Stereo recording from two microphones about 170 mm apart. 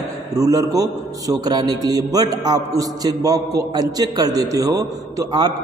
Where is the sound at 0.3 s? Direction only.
20° right (ahead or behind).